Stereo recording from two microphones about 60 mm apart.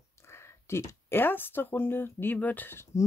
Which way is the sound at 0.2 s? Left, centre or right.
Left.